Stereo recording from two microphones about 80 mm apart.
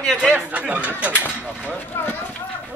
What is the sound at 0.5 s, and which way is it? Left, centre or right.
Speech, centre.